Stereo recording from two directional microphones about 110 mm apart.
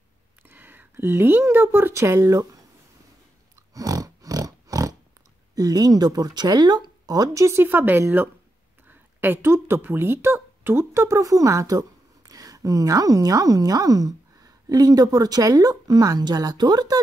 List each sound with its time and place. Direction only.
0.4 s speech: 15° right (ahead or behind)
3.7 s a sound: 35° right (ahead or behind)
5.5 s speech: 35° right (ahead or behind)